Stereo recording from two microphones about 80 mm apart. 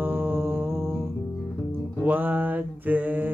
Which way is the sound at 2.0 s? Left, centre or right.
Right.